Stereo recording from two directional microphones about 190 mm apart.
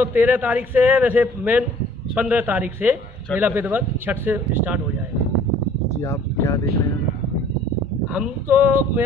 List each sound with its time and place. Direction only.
0.0 s a man's voice: 10° right (ahead or behind)
6.0 s speech: 15° left (ahead or behind)
8.1 s a man's voice: 10° right (ahead or behind)